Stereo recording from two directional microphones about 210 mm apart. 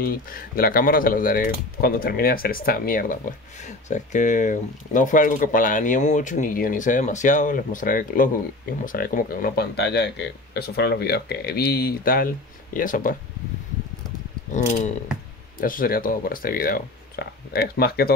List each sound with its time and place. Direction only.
0.0 s speech: 45° left (ahead or behind)
14.5 s speech: 35° left (ahead or behind)